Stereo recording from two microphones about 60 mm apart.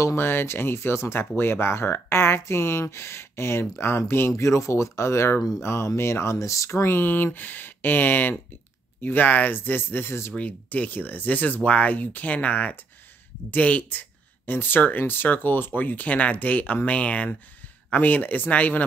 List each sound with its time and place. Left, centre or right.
0.1 s speech: left
4.4 s speech: left
10.3 s speech: left